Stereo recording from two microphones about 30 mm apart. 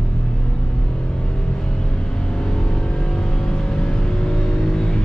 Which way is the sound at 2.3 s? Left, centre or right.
Left.